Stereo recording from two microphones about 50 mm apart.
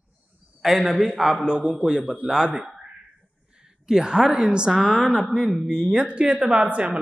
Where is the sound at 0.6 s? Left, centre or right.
Centre.